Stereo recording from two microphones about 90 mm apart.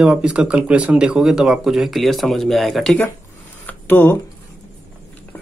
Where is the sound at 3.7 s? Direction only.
20° left (ahead or behind).